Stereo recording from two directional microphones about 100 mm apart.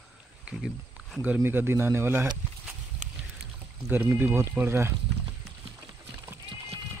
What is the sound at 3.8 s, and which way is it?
Speech, 20° right (ahead or behind).